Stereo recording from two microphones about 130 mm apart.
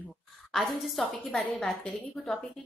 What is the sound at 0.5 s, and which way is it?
A woman's voice, centre (ahead or behind).